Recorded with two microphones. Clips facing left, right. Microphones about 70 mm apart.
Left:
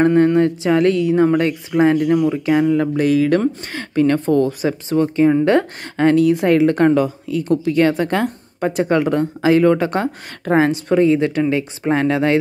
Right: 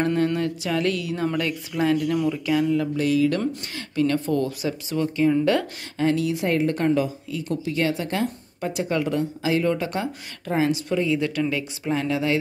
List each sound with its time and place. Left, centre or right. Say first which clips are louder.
0.0 s speech: left 9 dB; left
5.9 s a woman's voice: left 9 dB; left
6.5 s a woman's voice: left 6 dB; left
8.7 s a woman's voice: left 7 dB; left
11.1 s speech: left 7 dB; left
11.8 s a woman's voice: left 7 dB; left